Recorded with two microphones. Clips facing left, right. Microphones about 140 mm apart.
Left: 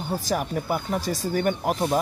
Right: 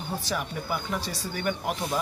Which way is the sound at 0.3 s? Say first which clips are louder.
Left 6 dB; 40° left (ahead or behind).